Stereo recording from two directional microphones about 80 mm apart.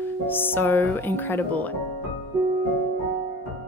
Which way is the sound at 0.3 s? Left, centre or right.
Left.